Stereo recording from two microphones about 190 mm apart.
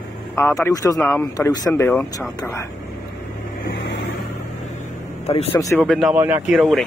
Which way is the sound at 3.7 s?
70° left (ahead or behind).